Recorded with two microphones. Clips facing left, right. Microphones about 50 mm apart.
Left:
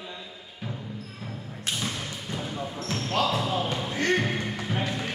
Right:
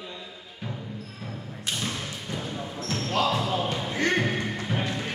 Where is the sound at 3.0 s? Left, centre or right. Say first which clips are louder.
Right 1 dB; centre.